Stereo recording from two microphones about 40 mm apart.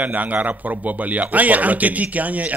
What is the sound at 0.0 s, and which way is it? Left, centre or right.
A man's voice, right.